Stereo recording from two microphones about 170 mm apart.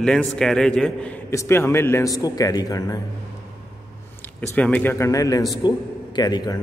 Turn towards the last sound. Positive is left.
turn(degrees=25)  # may be behind; listen again after turning